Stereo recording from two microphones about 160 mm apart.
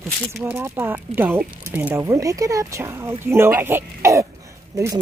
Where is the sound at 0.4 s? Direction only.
15° right (ahead or behind).